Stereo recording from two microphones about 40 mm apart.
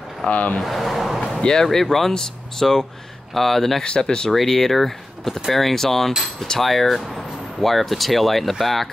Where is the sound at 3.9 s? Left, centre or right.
Centre.